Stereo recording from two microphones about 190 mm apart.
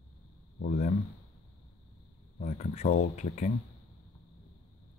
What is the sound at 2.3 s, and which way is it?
Speech, 40° left (ahead or behind).